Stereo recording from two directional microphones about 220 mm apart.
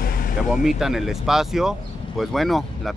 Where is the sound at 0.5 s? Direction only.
Centre (ahead or behind).